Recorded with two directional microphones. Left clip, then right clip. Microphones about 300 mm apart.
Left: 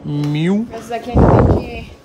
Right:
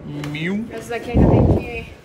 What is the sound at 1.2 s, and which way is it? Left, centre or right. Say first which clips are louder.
Speech: left 5 dB; right.